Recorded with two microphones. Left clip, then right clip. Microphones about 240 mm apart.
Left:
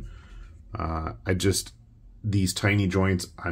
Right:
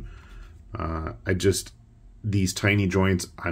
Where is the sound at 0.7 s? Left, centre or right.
Centre.